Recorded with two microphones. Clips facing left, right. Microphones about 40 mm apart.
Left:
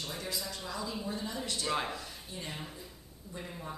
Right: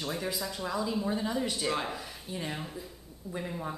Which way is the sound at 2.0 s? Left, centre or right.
Centre.